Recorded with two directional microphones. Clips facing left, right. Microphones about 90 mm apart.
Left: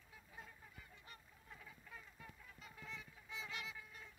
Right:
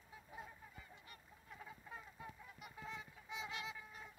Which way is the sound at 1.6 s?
25° right (ahead or behind).